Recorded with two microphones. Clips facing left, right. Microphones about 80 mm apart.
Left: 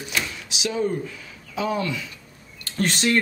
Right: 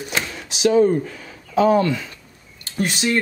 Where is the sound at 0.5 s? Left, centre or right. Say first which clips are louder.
Right 11 dB; right.